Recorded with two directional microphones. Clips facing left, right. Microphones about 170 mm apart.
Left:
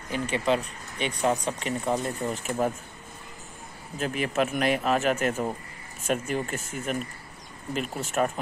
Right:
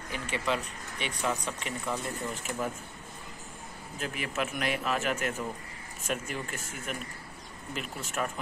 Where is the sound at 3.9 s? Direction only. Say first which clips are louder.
Left 7 dB; 40° left (ahead or behind).